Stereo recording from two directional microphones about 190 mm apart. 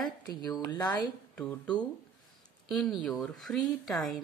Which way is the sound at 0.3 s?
20° left (ahead or behind).